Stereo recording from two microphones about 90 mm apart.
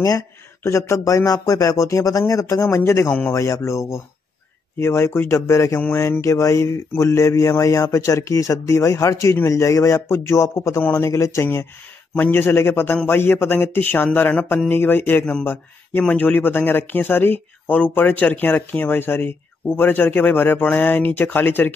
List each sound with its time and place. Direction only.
0.7 s speech: 35° left (ahead or behind)
10.8 s speech: 20° left (ahead or behind)
11.1 s speech: 35° left (ahead or behind)
12.1 s speech: 20° left (ahead or behind)